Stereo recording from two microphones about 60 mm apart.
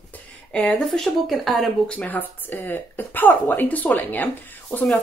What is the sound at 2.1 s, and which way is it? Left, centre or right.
Speech, left.